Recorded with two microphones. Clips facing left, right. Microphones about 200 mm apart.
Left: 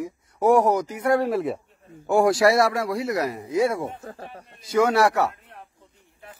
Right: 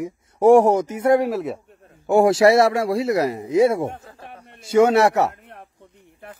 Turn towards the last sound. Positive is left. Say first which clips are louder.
# right 4 dB
turn(degrees=-25)  # may be behind; listen again after turning